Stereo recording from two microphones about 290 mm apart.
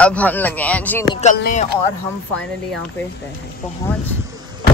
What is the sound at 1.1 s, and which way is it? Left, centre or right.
Speech, left.